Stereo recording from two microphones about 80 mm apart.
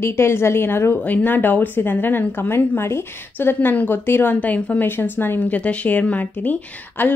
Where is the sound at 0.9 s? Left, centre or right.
Left.